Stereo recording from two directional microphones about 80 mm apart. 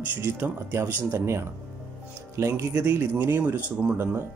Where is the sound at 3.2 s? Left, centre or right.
Right.